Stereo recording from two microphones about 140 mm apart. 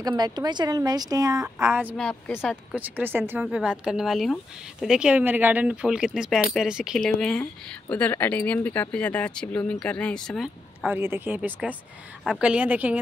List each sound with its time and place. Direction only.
0.0 s a woman's voice: 30° right (ahead or behind)
2.0 s speech: 5° left (ahead or behind)
2.7 s speech: 15° right (ahead or behind)
11.0 s speech: 15° right (ahead or behind)